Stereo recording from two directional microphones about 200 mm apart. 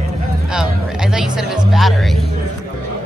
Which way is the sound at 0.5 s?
5° right (ahead or behind).